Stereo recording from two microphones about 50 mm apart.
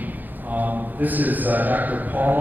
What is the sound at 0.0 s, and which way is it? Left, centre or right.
A man's voice, right.